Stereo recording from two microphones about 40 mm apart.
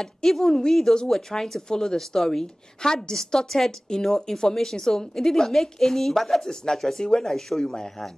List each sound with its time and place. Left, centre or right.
0.0 s a woman's voice: centre
6.5 s a woman's voice: centre